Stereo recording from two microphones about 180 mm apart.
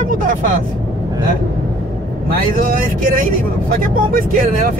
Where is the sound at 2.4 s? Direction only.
50° right (ahead or behind).